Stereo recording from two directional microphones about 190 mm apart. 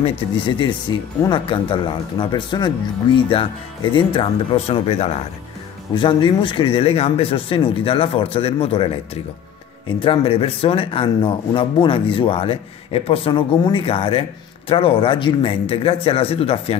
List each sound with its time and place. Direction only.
0.0 s speech: 25° left (ahead or behind)